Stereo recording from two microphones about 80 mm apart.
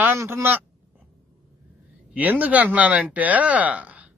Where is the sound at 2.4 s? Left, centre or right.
Centre.